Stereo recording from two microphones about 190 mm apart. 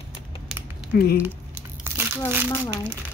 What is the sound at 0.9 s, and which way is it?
Speech, 55° left (ahead or behind).